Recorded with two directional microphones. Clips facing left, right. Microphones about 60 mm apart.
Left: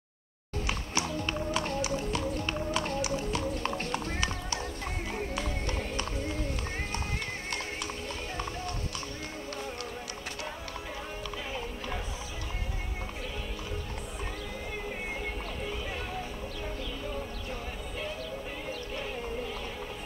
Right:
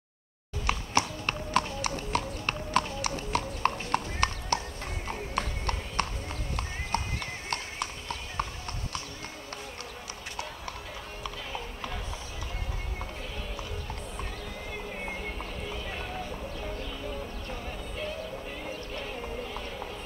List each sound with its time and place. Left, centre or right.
0.7 s music: right
7.4 s clip-clop: right